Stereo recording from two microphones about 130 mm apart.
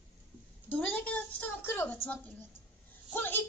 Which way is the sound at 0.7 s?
10° left (ahead or behind).